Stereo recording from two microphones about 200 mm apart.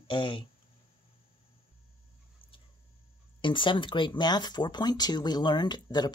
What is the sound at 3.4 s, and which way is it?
Speech, 25° left (ahead or behind).